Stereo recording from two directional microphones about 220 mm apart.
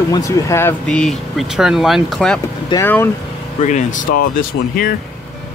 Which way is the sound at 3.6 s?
35° left (ahead or behind).